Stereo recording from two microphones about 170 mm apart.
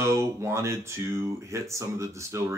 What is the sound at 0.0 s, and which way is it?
Speech, 15° right (ahead or behind).